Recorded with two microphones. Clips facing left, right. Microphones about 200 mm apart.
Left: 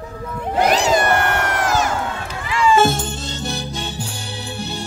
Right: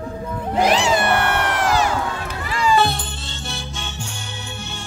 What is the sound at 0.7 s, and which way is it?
Cat, 40° left (ahead or behind).